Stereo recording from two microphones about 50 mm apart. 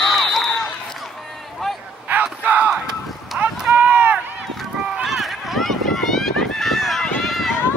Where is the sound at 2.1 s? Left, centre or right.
Right.